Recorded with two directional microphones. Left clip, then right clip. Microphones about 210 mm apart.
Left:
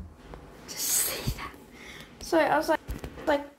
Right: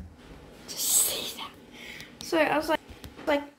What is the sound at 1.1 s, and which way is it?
Speech, 20° left (ahead or behind).